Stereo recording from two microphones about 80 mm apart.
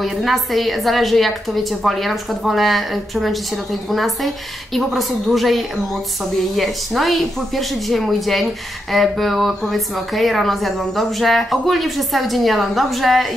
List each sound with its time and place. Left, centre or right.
0.0 s a woman's voice: centre